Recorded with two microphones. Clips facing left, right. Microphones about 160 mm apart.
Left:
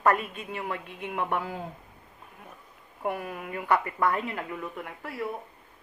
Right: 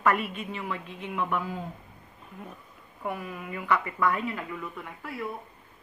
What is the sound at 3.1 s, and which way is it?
Speech, 55° left (ahead or behind).